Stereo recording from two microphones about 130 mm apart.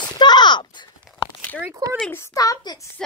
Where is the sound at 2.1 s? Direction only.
25° left (ahead or behind).